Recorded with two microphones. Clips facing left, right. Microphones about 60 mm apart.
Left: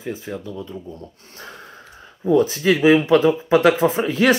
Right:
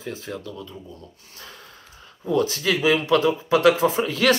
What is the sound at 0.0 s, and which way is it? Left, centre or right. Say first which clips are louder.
Speech: left 3 dB; centre.